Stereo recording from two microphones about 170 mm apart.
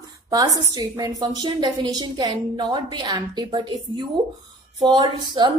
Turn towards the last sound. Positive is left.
turn(degrees=-30)  # may be behind; listen again after turning